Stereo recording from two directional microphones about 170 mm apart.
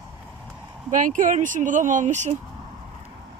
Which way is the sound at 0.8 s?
50° right (ahead or behind).